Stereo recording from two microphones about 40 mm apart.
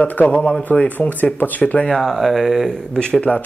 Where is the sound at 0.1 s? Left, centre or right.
Left.